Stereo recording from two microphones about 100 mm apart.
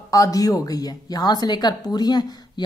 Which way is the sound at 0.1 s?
35° left (ahead or behind).